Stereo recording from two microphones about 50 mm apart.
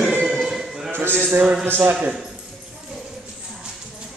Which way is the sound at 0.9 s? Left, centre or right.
Right.